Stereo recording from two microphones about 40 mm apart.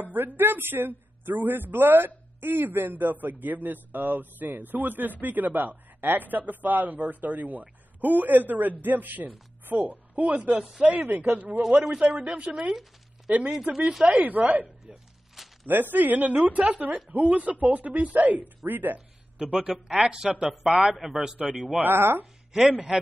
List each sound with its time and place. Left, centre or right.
0.0 s a woman's voice: right
11.7 s a man's voice: right
18.9 s speech: right
20.7 s a man's voice: right
21.7 s speech: right
22.6 s speech: right